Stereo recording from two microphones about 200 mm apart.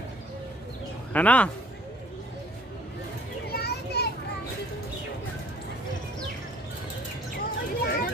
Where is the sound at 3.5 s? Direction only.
55° left (ahead or behind).